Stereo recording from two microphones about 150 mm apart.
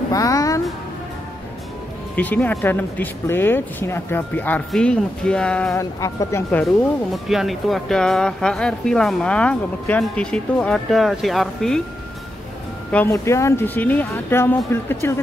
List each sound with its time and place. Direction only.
0.1 s a sound: 20° left (ahead or behind)
2.1 s speech: 10° left (ahead or behind)
5.8 s speech: 20° left (ahead or behind)
6.6 s speech: centre (ahead or behind)
12.9 s speech: 15° left (ahead or behind)